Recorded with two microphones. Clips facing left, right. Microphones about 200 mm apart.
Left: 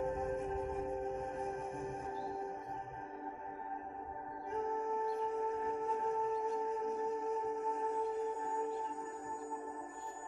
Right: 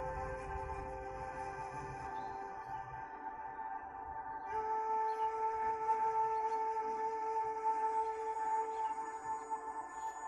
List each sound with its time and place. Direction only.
0.0 s music: 30° left (ahead or behind)
4.5 s music: 30° left (ahead or behind)